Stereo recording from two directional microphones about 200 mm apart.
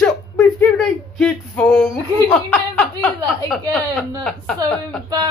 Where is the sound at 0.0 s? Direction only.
5° left (ahead or behind).